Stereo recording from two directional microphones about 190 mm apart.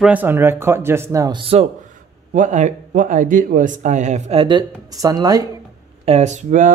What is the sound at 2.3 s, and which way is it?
Speech, 40° right (ahead or behind).